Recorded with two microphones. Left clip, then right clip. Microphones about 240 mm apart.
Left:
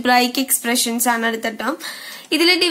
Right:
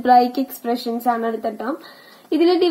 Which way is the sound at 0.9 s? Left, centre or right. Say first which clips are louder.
Left 1 dB; left.